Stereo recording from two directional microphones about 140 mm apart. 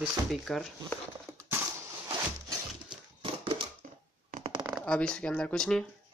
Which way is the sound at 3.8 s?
75° right (ahead or behind).